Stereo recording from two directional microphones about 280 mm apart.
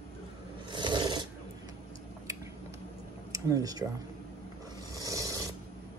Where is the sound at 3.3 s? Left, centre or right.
Centre.